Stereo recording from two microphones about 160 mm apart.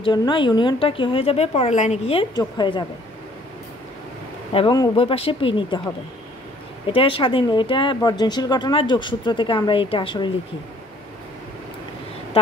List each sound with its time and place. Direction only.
0.0 s a woman's voice: 30° left (ahead or behind)
2.3 s speech: 30° left (ahead or behind)
4.6 s a woman's voice: 30° left (ahead or behind)
6.9 s speech: 35° left (ahead or behind)